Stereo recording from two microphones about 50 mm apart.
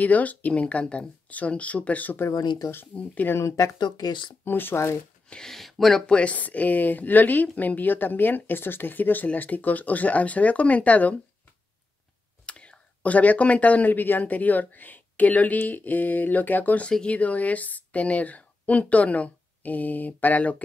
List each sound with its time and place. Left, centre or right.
0.0 s speech: left
2.1 s speech: left
2.9 s speech: left
3.3 s speech: left
4.5 s speech: left
5.5 s speech: centre
6.0 s speech: left
12.4 s speech: left